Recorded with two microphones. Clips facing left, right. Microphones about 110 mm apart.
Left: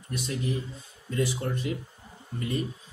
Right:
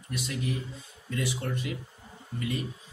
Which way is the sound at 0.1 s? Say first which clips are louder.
Left 2 dB; 30° left (ahead or behind).